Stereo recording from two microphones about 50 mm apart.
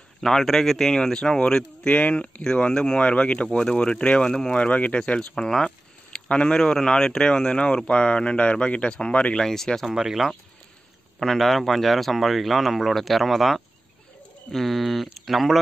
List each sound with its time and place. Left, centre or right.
0.2 s speech: centre; by 2.4 s left
2.4 s speech: centre
4.6 s speech: left
9.4 s speech: centre
9.9 s speech: centre
11.1 s speech: centre